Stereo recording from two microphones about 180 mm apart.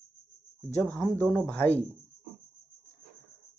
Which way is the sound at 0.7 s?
15° left (ahead or behind).